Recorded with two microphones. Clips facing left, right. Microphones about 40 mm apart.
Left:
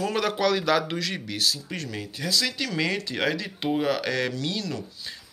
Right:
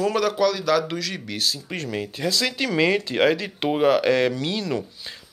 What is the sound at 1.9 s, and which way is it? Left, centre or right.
Speech, right.